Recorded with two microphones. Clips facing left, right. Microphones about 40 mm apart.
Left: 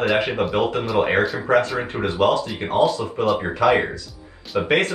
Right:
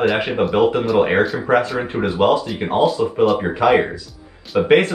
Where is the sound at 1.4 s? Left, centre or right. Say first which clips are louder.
Right 2 dB; centre.